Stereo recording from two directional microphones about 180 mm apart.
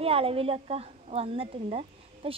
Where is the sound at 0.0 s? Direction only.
30° right (ahead or behind).